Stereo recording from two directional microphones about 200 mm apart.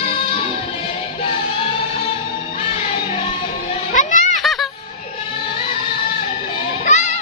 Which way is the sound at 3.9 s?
40° left (ahead or behind).